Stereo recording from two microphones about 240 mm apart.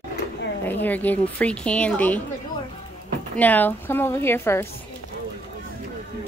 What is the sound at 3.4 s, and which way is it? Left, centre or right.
A woman's voice, centre.